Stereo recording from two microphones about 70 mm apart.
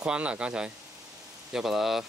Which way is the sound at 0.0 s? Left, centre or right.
Centre.